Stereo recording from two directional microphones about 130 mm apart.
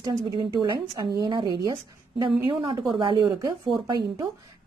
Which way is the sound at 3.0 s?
35° right (ahead or behind).